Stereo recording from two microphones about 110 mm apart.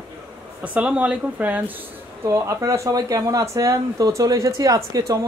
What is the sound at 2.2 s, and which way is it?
Speech, 25° right (ahead or behind).